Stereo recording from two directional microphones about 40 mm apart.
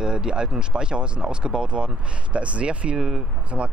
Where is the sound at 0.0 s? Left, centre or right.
Centre.